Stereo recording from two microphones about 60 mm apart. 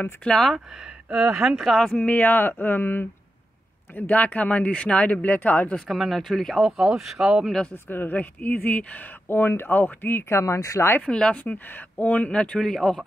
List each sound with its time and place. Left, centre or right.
0.2 s speech: centre
1.1 s speech: centre
1.8 s speech: centre
2.0 s speech: left
4.1 s speech: left
5.9 s speech: centre
6.6 s speech: centre
7.7 s speech: left
11.0 s speech: centre
11.4 s speech: left; by 13.0 s centre